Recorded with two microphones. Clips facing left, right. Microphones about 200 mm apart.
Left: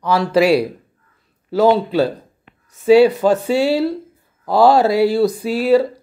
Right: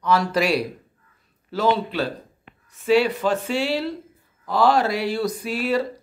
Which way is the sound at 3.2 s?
40° left (ahead or behind).